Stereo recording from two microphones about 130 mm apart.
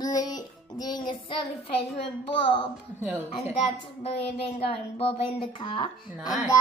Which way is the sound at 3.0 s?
20° right (ahead or behind).